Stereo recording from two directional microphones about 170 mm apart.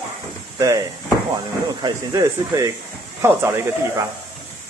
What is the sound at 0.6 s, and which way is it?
Speech, 20° right (ahead or behind).